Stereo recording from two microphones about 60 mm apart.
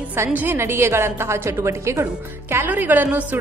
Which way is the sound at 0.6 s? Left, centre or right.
Right.